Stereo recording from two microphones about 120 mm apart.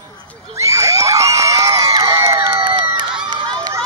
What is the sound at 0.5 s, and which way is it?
Crowd, 25° right (ahead or behind).